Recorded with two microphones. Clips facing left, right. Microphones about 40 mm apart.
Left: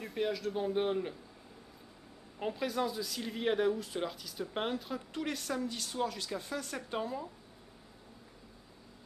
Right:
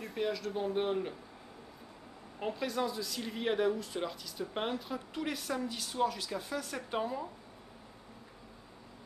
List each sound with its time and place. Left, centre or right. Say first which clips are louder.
0.0 s speech: left 1 dB; centre
2.4 s speech: even; centre